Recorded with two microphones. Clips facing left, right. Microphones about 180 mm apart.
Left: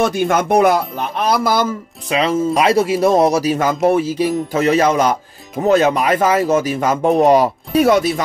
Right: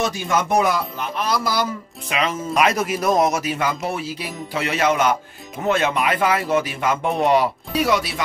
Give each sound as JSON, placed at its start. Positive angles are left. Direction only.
{"t": 0.0, "sound": "speech", "side_deg": 55}
{"t": 2.0, "sound": "speech", "side_deg": 30}